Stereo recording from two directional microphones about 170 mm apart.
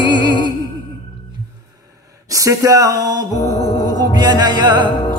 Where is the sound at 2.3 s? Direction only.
20° right (ahead or behind).